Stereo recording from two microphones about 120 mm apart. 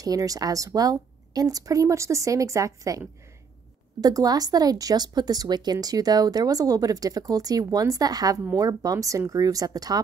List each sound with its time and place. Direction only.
0.0 s speech: 30° right (ahead or behind)